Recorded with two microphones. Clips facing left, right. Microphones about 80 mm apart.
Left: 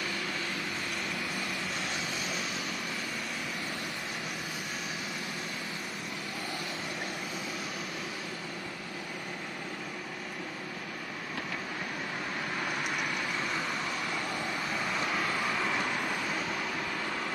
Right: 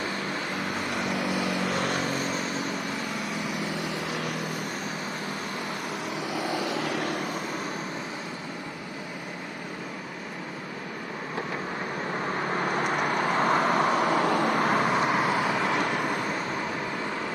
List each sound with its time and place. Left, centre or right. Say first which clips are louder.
1.0 s vehicle: right 8 dB; right
6.3 s vehicle: right 11 dB; right
12.2 s vehicle: right 8 dB; right